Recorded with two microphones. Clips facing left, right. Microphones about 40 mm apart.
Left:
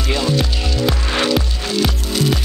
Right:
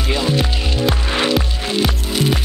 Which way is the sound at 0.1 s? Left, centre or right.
Centre.